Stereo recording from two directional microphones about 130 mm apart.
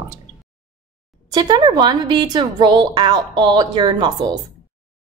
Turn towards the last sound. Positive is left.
turn(degrees=-35)  # may be behind; listen again after turning